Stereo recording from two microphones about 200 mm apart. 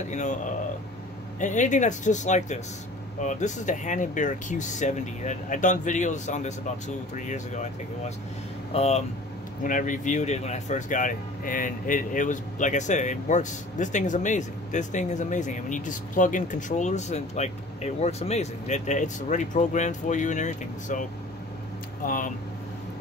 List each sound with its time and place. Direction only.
0.1 s speech: 35° left (ahead or behind)
1.4 s speech: 40° left (ahead or behind)
8.7 s speech: 30° left (ahead or behind)